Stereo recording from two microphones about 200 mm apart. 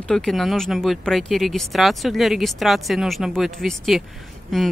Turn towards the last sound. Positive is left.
turn(degrees=0)  # may be behind; listen again after turning